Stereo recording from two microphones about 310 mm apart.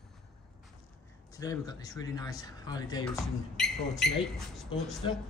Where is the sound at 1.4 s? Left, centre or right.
Centre.